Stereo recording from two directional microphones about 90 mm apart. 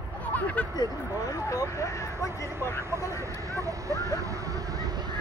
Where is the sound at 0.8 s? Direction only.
40° left (ahead or behind).